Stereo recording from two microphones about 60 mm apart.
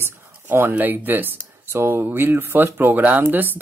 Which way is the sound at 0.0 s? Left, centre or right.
Right.